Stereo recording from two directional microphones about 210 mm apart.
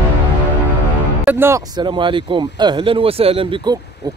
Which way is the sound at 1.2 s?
10° right (ahead or behind).